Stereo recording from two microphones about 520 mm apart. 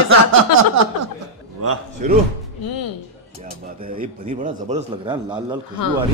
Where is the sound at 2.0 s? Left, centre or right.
Centre.